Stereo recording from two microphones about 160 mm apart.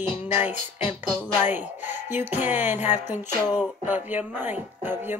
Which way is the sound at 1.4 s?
10° right (ahead or behind).